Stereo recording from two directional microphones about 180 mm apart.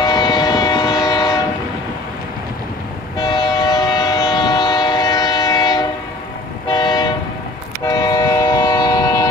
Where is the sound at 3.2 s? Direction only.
20° left (ahead or behind).